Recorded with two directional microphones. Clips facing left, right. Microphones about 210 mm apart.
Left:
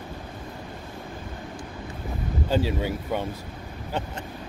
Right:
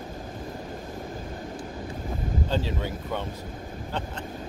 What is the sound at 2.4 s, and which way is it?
Speech, 10° left (ahead or behind).